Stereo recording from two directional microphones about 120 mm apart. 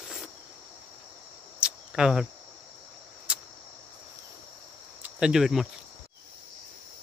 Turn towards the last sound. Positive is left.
turn(degrees=-5)  # may be behind; listen again after turning